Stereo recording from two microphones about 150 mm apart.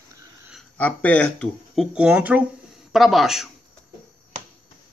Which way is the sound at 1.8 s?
10° right (ahead or behind).